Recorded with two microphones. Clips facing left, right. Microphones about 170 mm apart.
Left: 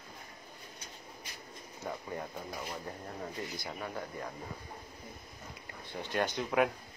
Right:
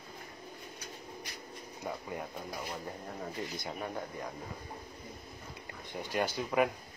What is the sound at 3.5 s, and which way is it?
Speech, 20° right (ahead or behind).